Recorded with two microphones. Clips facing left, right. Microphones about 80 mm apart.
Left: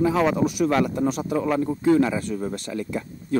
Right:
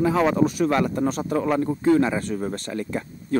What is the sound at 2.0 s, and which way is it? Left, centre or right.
Speech, right.